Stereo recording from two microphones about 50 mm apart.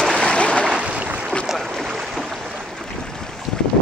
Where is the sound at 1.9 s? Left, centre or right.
Centre.